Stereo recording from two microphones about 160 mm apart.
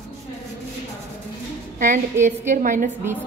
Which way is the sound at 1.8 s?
50° right (ahead or behind).